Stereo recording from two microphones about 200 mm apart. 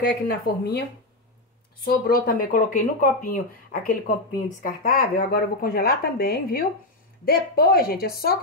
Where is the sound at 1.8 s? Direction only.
45° left (ahead or behind).